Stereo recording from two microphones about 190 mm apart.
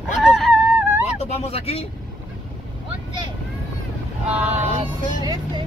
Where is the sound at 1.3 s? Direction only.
35° left (ahead or behind).